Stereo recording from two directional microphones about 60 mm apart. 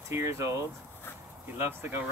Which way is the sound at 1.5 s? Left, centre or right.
Right.